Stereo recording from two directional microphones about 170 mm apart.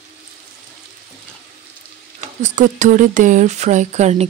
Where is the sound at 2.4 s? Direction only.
45° right (ahead or behind).